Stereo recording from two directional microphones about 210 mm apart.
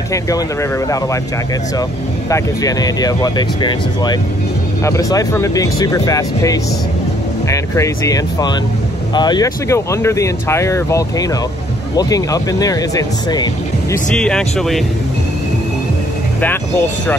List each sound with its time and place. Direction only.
0.1 s speech: 15° left (ahead or behind)
2.2 s speech: 15° left (ahead or behind)
14.1 s speech: 5° left (ahead or behind)